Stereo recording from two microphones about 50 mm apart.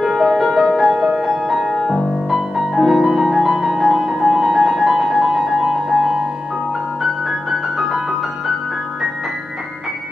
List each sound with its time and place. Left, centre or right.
0.0 s music: centre
0.9 s music: centre
7.0 s music: centre